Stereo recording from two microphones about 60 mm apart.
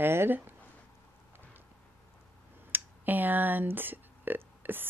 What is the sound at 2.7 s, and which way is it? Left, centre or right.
Speech, right.